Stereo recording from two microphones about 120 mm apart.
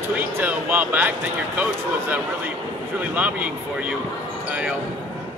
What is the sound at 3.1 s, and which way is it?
Speech, 10° right (ahead or behind).